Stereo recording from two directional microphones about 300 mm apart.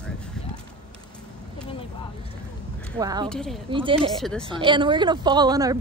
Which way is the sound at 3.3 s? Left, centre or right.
Centre.